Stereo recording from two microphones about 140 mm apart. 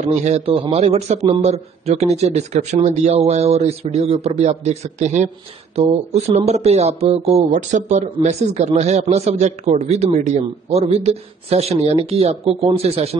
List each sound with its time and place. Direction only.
0.1 s a man's voice: 50° right (ahead or behind)